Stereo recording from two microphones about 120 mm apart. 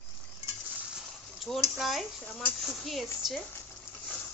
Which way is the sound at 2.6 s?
Centre (ahead or behind).